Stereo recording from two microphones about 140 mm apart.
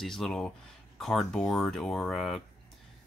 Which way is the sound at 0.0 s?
Centre (ahead or behind).